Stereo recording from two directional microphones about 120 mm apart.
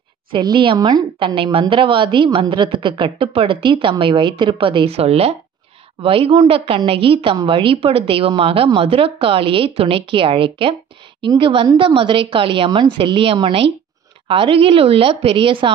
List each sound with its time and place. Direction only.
0.3 s speech: 40° right (ahead or behind)